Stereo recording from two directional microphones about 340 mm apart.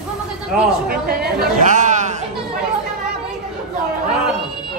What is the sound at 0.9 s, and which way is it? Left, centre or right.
Speech, right.